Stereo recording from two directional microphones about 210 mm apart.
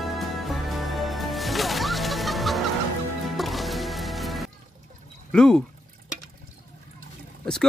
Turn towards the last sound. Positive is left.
turn(degrees=5)  # may be behind; listen again after turning